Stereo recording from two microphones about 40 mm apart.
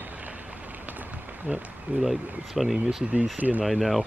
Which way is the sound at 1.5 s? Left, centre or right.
Right.